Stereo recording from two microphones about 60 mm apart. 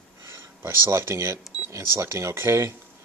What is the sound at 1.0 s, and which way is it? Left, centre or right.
Speech, right.